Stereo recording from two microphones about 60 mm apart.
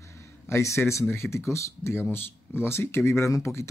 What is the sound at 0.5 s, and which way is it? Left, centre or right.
Speech, left.